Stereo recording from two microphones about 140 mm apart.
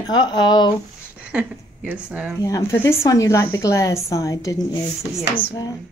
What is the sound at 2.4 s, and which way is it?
A woman's voice, 20° left (ahead or behind).